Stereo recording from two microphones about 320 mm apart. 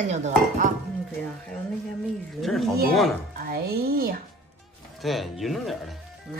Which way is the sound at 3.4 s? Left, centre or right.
Right.